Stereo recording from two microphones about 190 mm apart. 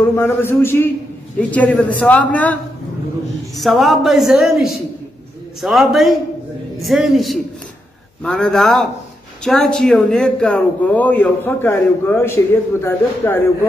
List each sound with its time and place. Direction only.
0.0 s a man's voice: 10° left (ahead or behind)